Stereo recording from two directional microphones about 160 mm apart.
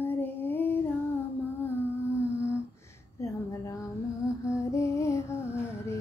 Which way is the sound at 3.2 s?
20° left (ahead or behind).